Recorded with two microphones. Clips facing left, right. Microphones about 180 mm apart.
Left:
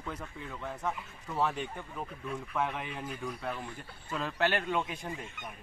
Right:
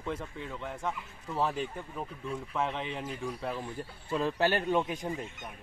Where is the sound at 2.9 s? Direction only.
5° right (ahead or behind).